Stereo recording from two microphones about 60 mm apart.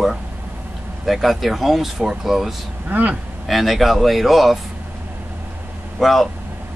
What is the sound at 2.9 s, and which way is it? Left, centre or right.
Speech, right.